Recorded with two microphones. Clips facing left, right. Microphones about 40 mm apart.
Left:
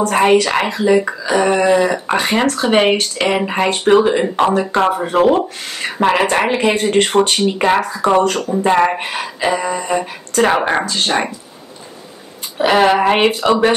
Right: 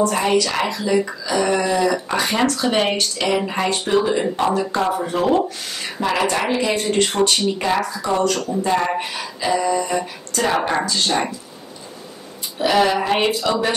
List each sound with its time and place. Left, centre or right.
0.0 s speech: left
12.5 s speech: left